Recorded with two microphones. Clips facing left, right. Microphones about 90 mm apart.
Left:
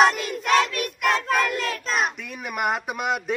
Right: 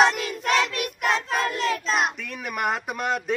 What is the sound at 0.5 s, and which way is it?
Choir, 40° left (ahead or behind).